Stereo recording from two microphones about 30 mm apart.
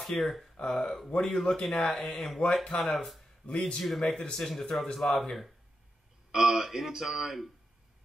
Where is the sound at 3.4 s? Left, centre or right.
Left.